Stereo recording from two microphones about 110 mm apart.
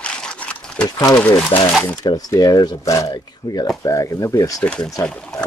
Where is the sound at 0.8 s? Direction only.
35° left (ahead or behind).